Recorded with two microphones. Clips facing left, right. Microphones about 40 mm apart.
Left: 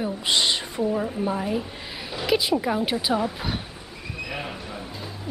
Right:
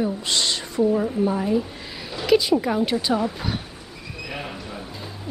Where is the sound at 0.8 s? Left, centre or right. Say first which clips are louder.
Right 7 dB; centre.